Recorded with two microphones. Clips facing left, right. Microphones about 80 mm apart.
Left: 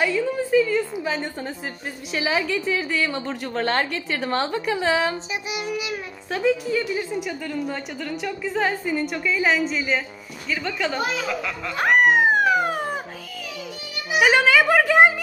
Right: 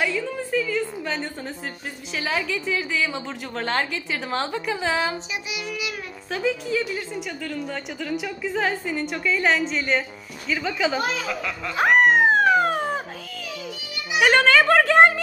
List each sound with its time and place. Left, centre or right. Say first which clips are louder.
0.0 s a woman's voice: left 3 dB; centre
6.3 s a woman's voice: left 3 dB; centre
14.1 s a woman's voice: even; centre